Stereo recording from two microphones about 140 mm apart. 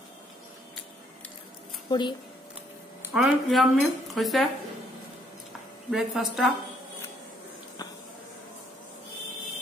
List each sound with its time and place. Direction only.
1.9 s speech: 30° left (ahead or behind)
3.1 s speech: centre (ahead or behind)
5.9 s speech: centre (ahead or behind)